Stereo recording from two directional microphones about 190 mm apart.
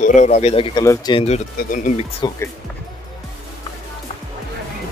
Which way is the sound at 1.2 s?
40° left (ahead or behind).